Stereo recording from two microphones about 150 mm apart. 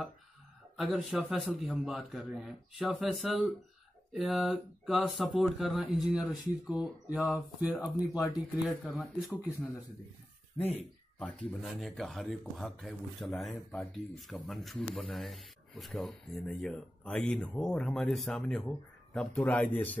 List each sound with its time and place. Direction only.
0.7 s speech: centre (ahead or behind)
8.6 s speech: centre (ahead or behind)
10.6 s speech: 45° left (ahead or behind)
11.1 s a man's voice: 5° left (ahead or behind)